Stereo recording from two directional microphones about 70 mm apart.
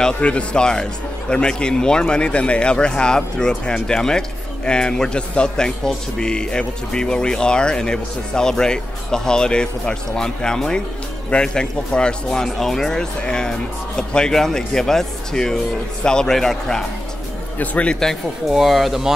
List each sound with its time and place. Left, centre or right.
0.0 s a man's voice: centre
17.6 s speech: centre
18.5 s speech: centre